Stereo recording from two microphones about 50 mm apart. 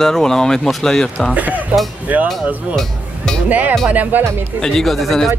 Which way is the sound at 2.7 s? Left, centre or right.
Centre.